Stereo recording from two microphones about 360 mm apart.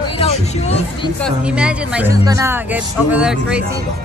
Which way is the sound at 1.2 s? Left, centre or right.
Centre.